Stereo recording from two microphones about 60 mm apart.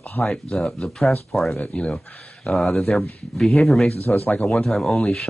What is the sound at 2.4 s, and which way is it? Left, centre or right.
Speech, centre.